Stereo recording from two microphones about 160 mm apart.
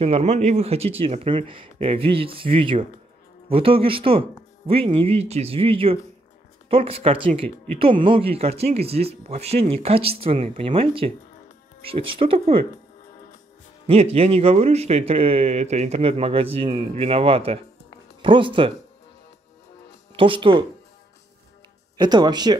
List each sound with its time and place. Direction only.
0.0 s speech: 40° right (ahead or behind)
13.8 s speech: 35° right (ahead or behind)
20.2 s speech: 35° right (ahead or behind)
21.9 s speech: 25° right (ahead or behind)